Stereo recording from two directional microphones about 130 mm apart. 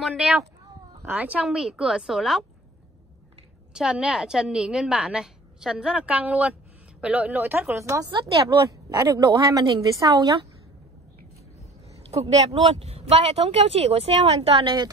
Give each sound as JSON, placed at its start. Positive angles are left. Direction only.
{"t": 0.0, "sound": "a woman's voice", "side_deg": -5}
{"t": 3.7, "sound": "a woman's voice", "side_deg": -5}
{"t": 12.1, "sound": "speech", "side_deg": -55}
{"t": 14.6, "sound": "a woman's voice", "side_deg": -40}